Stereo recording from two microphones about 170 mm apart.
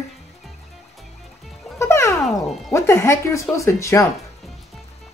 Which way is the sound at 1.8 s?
15° left (ahead or behind).